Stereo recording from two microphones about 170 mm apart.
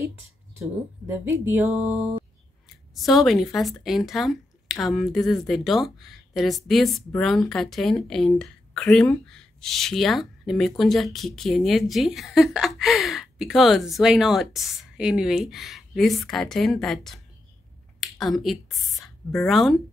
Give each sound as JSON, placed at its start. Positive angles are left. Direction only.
{"t": 1.0, "sound": "speech", "side_deg": -10}